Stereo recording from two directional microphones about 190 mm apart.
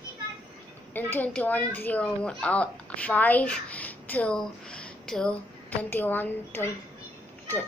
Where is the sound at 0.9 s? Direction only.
10° left (ahead or behind).